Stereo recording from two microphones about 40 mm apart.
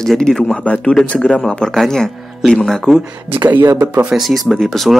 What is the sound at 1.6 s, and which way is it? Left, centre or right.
Speech, centre.